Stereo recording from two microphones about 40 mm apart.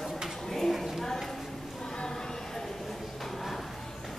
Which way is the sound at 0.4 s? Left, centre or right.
Centre.